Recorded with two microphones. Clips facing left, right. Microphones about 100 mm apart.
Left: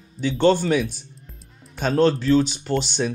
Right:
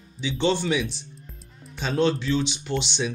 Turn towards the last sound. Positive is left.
turn(degrees=45)  # may be behind; listen again after turning